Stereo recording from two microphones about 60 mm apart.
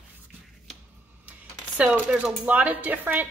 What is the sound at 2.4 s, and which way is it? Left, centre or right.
Speech, right.